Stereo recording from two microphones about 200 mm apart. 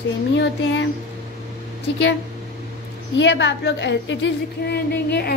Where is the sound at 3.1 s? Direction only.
60° left (ahead or behind).